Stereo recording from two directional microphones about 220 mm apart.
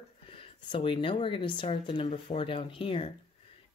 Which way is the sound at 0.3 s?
25° left (ahead or behind).